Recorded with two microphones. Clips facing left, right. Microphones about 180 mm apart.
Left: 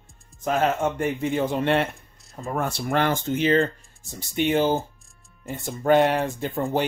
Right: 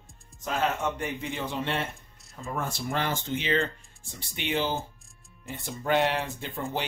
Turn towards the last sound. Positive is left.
turn(degrees=50)  # may be behind; listen again after turning